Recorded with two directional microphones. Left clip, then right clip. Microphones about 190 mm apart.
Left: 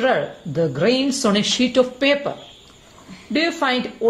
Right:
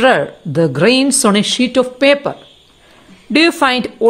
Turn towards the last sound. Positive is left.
turn(degrees=-50)  # may be behind; listen again after turning